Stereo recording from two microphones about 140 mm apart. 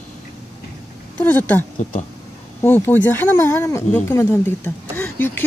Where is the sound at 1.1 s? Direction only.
10° left (ahead or behind).